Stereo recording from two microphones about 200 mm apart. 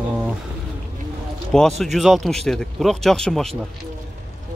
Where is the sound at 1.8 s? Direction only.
Centre (ahead or behind).